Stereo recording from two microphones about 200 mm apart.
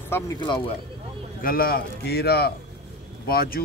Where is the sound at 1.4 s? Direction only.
45° left (ahead or behind).